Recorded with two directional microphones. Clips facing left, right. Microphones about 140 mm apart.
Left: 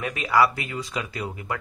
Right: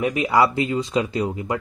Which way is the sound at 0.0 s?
20° right (ahead or behind).